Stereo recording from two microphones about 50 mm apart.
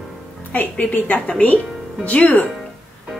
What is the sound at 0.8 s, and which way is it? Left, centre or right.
Speech, left.